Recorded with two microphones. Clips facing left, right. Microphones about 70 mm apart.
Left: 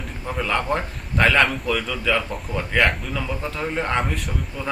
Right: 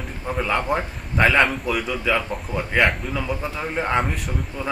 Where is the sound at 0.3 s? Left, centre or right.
Centre.